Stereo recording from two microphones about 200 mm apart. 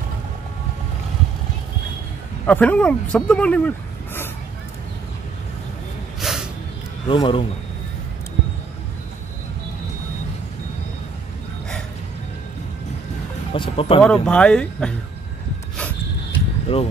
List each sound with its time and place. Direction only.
2.4 s speech: 5° left (ahead or behind)
6.2 s snort: centre (ahead or behind)
7.1 s speech: 25° left (ahead or behind)
13.5 s speech: 25° left (ahead or behind)
14.0 s speech: 5° left (ahead or behind)
16.7 s speech: 30° left (ahead or behind)